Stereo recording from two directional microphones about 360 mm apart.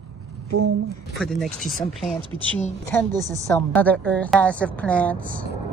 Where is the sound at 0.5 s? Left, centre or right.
Right.